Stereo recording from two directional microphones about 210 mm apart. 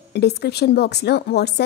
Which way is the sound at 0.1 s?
50° left (ahead or behind).